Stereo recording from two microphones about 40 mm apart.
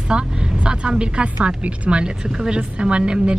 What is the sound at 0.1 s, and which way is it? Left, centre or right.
A woman's voice, right.